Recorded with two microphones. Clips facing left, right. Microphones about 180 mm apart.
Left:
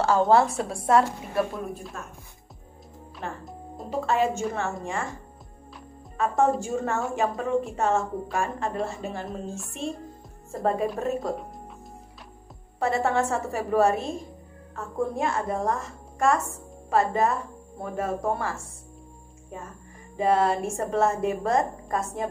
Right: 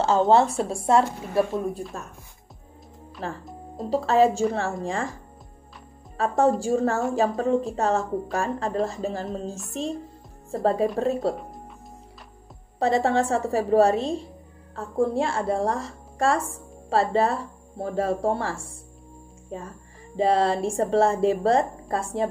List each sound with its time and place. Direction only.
0.0 s a woman's voice: 25° right (ahead or behind)
3.4 s music: centre (ahead or behind)
3.9 s a woman's voice: 35° right (ahead or behind)
6.1 s a woman's voice: 35° right (ahead or behind)
12.7 s a woman's voice: 35° right (ahead or behind)